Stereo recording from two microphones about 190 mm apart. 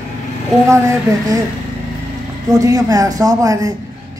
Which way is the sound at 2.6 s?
20° right (ahead or behind).